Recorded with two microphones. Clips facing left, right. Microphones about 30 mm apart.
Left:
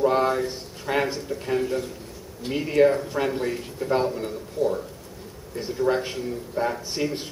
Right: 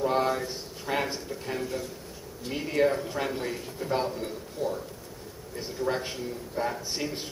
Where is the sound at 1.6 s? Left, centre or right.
Left.